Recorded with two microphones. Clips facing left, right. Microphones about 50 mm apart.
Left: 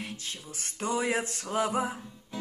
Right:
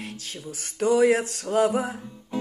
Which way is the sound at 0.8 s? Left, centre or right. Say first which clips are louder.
Right 9 dB; centre.